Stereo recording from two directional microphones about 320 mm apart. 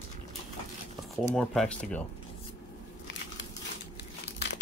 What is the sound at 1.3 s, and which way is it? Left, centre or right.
Speech, centre.